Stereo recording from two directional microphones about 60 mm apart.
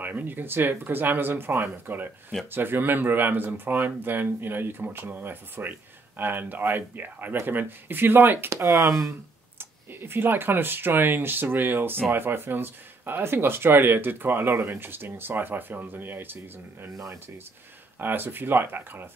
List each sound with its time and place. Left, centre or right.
0.0 s speech: right
8.5 s speech: right
9.6 s speech: right
17.9 s speech: right